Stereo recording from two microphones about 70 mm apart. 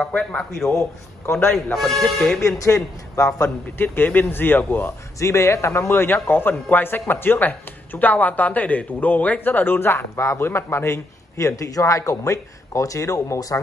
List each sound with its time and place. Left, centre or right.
0.1 s speech: centre
0.7 s a man's voice: left
1.7 s speech: centre
2.4 s a man's voice: left
3.4 s speech: left
5.2 s a man's voice: left